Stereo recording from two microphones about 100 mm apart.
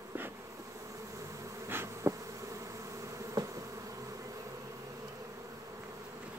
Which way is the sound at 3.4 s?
40° right (ahead or behind).